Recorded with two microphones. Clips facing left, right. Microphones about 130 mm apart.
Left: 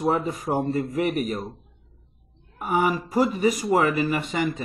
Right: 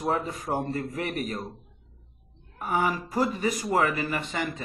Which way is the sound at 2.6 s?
15° left (ahead or behind).